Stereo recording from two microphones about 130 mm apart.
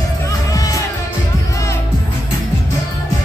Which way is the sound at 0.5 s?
25° left (ahead or behind).